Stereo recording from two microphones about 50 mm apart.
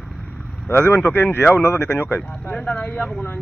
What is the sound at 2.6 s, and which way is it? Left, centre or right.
Speech, left.